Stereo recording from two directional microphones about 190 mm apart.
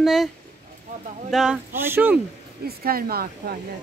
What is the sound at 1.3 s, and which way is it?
Speech, 5° right (ahead or behind).